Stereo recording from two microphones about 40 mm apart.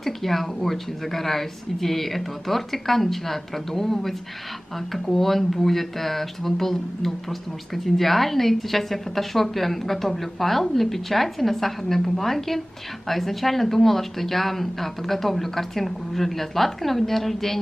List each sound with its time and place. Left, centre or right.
0.0 s speech: centre